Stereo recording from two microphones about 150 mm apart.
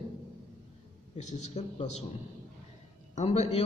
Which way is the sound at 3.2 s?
45° left (ahead or behind).